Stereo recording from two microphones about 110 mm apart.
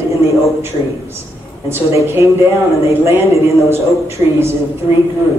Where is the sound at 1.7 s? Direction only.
25° right (ahead or behind).